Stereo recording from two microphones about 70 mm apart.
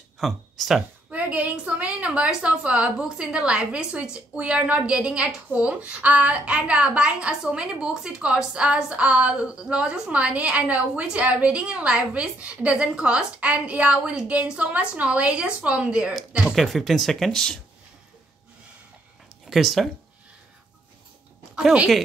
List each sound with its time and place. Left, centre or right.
0.2 s speech: centre
1.1 s a woman's voice: right
16.4 s speech: centre
19.4 s speech: centre